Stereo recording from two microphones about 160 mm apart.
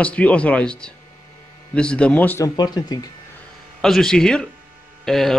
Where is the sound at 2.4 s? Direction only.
25° left (ahead or behind).